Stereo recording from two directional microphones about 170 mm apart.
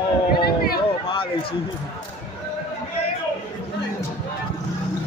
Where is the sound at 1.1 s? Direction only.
30° left (ahead or behind).